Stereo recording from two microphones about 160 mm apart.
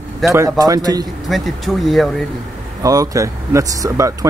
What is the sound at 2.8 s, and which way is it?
Speech, 20° right (ahead or behind).